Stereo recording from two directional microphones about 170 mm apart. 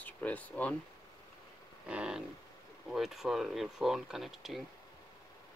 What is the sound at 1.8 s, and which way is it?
Speech, 5° right (ahead or behind).